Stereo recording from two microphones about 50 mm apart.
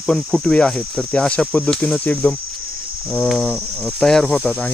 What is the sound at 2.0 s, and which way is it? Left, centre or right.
Speech, left.